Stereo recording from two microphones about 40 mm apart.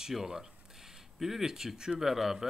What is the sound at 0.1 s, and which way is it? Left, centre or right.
Speech, centre.